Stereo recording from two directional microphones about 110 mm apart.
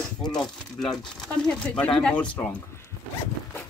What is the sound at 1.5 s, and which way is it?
Speech, 10° left (ahead or behind).